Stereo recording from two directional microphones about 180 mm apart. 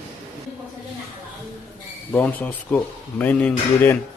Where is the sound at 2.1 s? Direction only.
10° left (ahead or behind).